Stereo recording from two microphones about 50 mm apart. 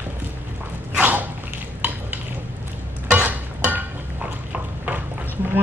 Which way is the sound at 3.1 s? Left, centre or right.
Right.